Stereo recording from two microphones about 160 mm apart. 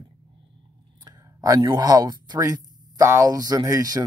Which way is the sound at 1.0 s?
20° right (ahead or behind).